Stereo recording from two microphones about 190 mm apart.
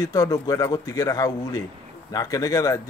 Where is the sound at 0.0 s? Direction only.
20° left (ahead or behind).